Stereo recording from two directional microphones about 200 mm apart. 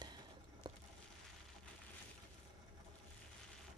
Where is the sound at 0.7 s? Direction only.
20° right (ahead or behind).